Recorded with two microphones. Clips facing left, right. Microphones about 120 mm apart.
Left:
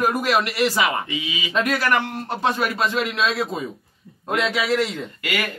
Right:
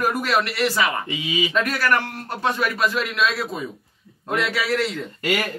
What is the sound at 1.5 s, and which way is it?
A man's voice, 20° left (ahead or behind).